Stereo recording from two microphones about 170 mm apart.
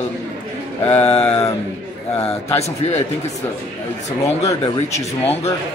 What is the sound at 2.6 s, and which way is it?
Speech, 40° left (ahead or behind).